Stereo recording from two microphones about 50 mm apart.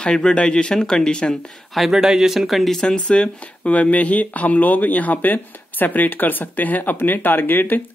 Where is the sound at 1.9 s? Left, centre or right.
Centre.